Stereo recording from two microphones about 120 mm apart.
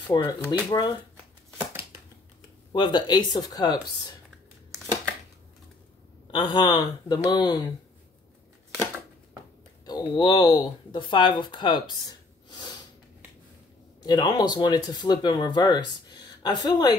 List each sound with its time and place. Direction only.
0.1 s speech: 40° left (ahead or behind)
2.7 s speech: 40° left (ahead or behind)
6.3 s speech: 40° left (ahead or behind)
9.8 s speech: 35° left (ahead or behind)
14.0 s speech: 35° left (ahead or behind)